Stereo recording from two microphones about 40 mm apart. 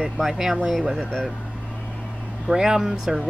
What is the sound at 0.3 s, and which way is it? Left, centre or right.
Speech, centre.